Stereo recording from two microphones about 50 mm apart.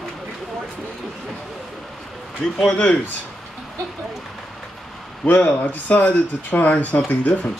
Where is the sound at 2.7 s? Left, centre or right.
Left.